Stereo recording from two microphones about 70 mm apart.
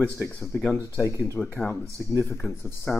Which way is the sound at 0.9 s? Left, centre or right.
Left.